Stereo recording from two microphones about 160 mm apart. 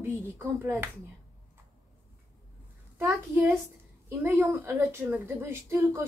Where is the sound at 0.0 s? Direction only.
15° right (ahead or behind).